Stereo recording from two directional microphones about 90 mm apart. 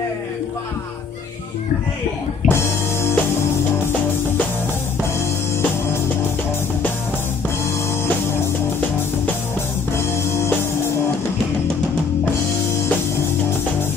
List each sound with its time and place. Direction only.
2.5 s music: 30° left (ahead or behind)
9.9 s music: 30° left (ahead or behind)